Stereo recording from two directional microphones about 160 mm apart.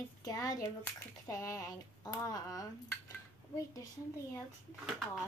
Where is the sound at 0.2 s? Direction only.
20° left (ahead or behind).